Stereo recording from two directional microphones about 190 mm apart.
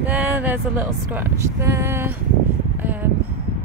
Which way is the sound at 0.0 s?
10° right (ahead or behind).